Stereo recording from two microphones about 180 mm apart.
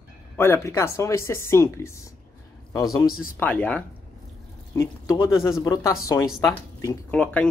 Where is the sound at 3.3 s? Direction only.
10° left (ahead or behind).